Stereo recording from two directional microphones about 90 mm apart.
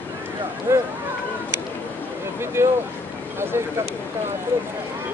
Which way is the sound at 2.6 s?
25° right (ahead or behind).